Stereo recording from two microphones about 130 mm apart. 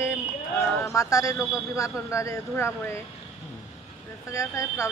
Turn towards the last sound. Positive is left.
turn(degrees=25)  # may be behind; listen again after turning